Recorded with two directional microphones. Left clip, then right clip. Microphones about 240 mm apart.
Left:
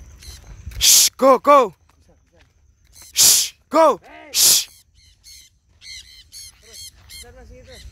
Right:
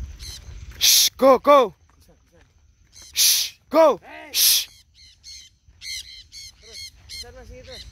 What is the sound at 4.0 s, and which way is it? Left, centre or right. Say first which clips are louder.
Sigh: right 2 dB; right.